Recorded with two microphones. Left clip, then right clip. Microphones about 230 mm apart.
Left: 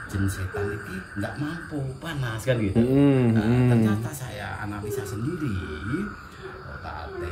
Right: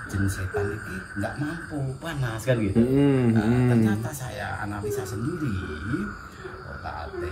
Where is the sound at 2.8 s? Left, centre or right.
Left.